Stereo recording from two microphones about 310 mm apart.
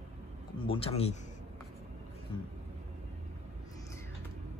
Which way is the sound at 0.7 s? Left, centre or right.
Centre.